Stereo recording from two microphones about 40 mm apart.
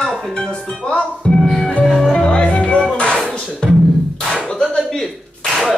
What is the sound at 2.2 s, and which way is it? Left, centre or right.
Music, left.